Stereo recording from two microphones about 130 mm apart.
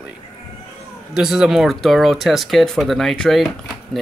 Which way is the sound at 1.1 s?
5° right (ahead or behind).